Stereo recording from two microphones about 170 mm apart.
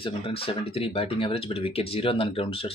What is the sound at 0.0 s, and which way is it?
Speech, 35° left (ahead or behind).